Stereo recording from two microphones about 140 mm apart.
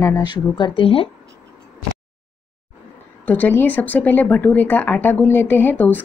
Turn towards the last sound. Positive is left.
turn(degrees=15)  # may be behind; listen again after turning